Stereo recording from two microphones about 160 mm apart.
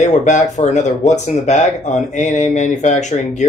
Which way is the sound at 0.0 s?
50° left (ahead or behind).